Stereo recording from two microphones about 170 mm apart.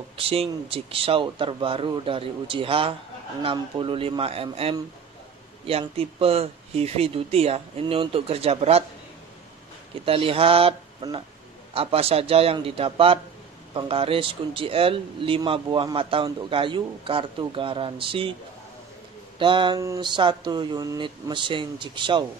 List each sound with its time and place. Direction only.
0.2 s speech: 35° right (ahead or behind)
10.0 s speech: 35° right (ahead or behind)
19.3 s speech: 30° right (ahead or behind)
19.8 s speech: 20° right (ahead or behind)